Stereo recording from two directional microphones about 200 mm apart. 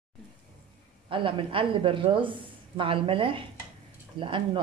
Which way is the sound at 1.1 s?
25° right (ahead or behind).